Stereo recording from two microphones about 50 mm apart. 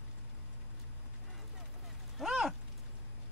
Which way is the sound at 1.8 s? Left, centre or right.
Centre.